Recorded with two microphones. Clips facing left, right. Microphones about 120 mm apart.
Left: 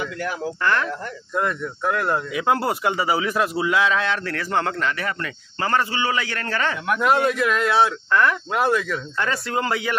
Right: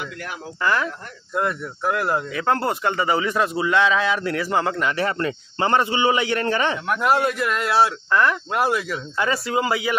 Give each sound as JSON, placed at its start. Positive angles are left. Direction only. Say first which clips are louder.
{"t": 0.6, "sound": "speech", "louder": "right 2 dB", "side_deg": -5}
{"t": 2.3, "sound": "speech", "louder": "left 1 dB", "side_deg": 10}
{"t": 4.2, "sound": "speech", "louder": "right 2 dB", "side_deg": -10}
{"t": 4.9, "sound": "a man's voice", "louder": "right 5 dB", "side_deg": -30}
{"t": 6.9, "sound": "speech", "louder": "left 2 dB", "side_deg": 0}